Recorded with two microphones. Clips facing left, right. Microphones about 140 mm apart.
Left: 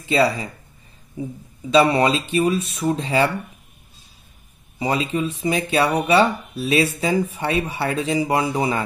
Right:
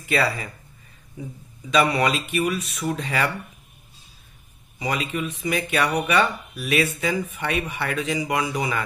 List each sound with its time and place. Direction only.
0.0 s speech: 25° left (ahead or behind)
1.7 s speech: 30° left (ahead or behind)
4.7 s speech: 30° left (ahead or behind)